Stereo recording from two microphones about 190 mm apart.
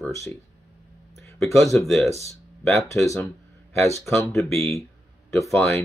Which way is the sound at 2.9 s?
15° left (ahead or behind).